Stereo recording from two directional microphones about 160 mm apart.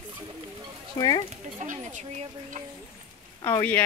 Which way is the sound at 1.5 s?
50° right (ahead or behind).